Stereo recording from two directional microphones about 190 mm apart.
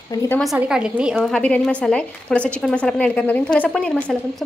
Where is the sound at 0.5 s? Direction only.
5° right (ahead or behind).